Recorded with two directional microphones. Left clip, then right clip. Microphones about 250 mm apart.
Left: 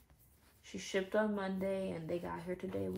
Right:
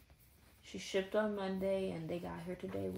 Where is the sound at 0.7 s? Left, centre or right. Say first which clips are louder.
Even; centre.